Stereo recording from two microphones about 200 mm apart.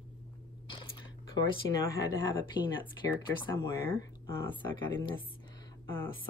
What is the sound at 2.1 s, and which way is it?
Speech, 25° left (ahead or behind).